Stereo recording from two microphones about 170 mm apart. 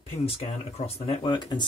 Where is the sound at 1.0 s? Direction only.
30° left (ahead or behind).